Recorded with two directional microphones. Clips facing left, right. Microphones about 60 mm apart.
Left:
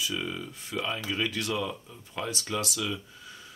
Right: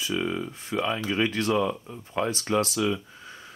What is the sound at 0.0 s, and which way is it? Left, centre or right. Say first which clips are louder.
Speech: right 5 dB; right.